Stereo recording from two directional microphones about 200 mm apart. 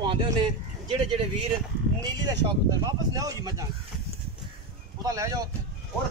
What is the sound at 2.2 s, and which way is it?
Speech, 20° right (ahead or behind).